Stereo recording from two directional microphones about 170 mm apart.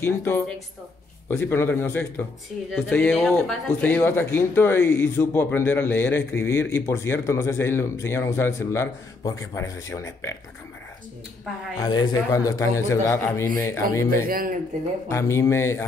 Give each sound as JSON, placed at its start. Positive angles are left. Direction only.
{"t": 0.0, "sound": "speech", "side_deg": 10}
{"t": 11.8, "sound": "a man's voice", "side_deg": 25}
{"t": 14.2, "sound": "speech", "side_deg": -55}
{"t": 15.0, "sound": "speech", "side_deg": 15}